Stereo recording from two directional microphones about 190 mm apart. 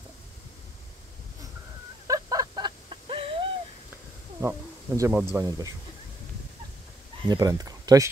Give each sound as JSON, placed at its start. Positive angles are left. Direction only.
{"t": 2.0, "sound": "a sound", "side_deg": -20}
{"t": 4.4, "sound": "speech", "side_deg": -15}
{"t": 7.2, "sound": "speech", "side_deg": -20}